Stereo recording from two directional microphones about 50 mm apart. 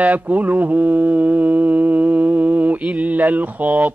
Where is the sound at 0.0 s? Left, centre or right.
Right.